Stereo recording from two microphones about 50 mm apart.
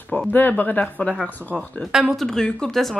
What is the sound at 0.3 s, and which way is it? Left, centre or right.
Speech, left.